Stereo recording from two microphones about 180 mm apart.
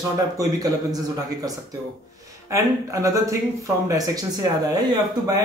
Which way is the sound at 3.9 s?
20° right (ahead or behind).